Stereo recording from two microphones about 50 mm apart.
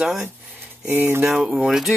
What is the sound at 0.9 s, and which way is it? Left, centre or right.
Speech, right.